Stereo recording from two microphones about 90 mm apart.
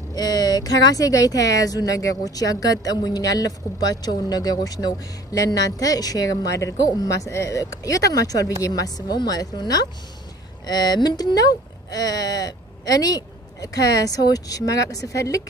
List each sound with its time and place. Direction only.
0.1 s speech: 45° left (ahead or behind)